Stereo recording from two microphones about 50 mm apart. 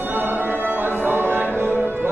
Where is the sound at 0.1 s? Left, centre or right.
Right.